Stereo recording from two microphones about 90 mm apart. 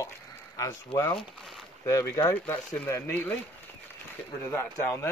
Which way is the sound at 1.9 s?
35° left (ahead or behind).